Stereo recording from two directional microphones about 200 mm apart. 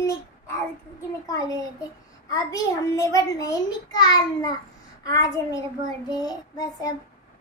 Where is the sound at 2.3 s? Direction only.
15° left (ahead or behind).